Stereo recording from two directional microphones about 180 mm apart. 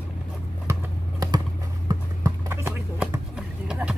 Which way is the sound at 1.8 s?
15° right (ahead or behind).